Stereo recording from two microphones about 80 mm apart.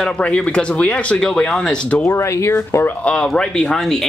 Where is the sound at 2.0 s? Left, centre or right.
Left.